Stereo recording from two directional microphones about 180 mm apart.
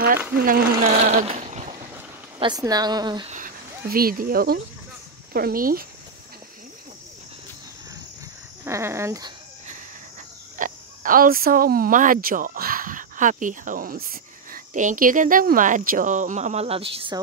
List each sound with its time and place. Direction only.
0.4 s speech: 55° right (ahead or behind)
0.8 s a sound: 35° right (ahead or behind)
2.3 s speech: 25° right (ahead or behind)
3.3 s speech: 50° right (ahead or behind)
8.6 s speech: 15° right (ahead or behind)
10.6 s speech: 50° right (ahead or behind); by 17.2 s 30° right (ahead or behind)